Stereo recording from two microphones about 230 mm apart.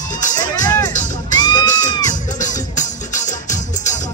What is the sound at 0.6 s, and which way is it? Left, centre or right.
Music, centre.